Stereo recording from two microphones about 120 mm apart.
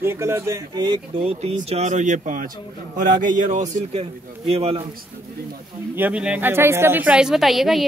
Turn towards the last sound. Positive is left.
turn(degrees=0)  # may be behind; listen again after turning